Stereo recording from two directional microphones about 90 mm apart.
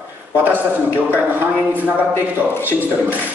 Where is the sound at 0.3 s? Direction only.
20° right (ahead or behind).